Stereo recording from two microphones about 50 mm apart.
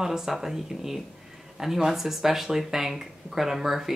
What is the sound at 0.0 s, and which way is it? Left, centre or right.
Speech, centre.